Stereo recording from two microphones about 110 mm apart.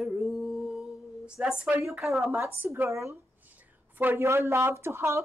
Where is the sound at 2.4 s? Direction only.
20° right (ahead or behind).